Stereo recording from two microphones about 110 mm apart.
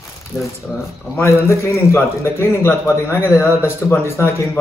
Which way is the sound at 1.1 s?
25° left (ahead or behind).